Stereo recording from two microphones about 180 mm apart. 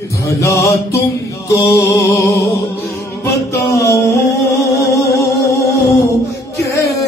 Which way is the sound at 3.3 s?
60° left (ahead or behind).